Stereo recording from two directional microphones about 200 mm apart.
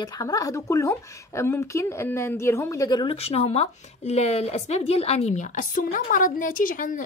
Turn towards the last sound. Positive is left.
turn(degrees=40)  # may be behind; listen again after turning